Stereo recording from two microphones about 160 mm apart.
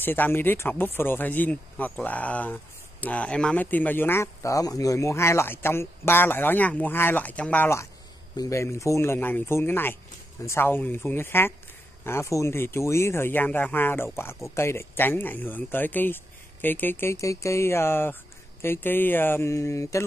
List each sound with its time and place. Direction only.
0.0 s speech: 10° left (ahead or behind)